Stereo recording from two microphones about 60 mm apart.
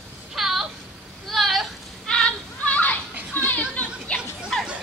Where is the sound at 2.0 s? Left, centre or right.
Centre.